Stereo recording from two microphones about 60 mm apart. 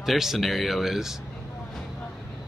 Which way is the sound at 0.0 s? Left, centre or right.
Centre.